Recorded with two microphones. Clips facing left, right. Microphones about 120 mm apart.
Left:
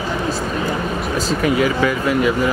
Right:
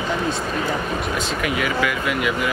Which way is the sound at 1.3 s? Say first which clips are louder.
Left 6 dB; 35° left (ahead or behind).